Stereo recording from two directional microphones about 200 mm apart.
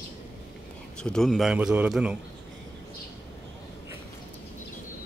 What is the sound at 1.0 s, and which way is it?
A man's voice, 5° left (ahead or behind).